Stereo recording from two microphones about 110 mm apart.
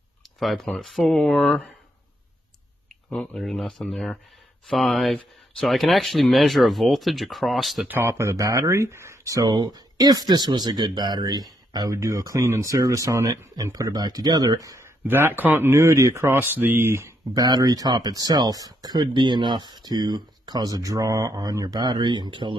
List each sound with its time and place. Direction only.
0.4 s speech: centre (ahead or behind)
3.3 s speech: centre (ahead or behind)
7.9 s speech: 25° right (ahead or behind)
15.0 s speech: 20° right (ahead or behind)
17.4 s speech: 35° right (ahead or behind)